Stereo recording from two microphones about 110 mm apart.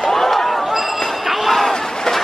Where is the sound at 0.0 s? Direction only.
Centre (ahead or behind).